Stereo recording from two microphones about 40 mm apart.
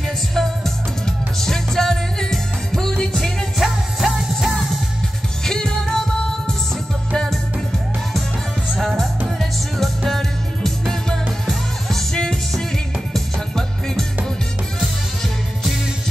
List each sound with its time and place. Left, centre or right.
0.3 s music: centre
5.4 s music: centre
9.4 s music: centre